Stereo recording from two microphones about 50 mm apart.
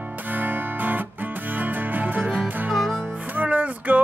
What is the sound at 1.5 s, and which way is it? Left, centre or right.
Music, right.